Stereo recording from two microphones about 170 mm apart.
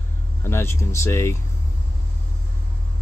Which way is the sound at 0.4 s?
15° left (ahead or behind).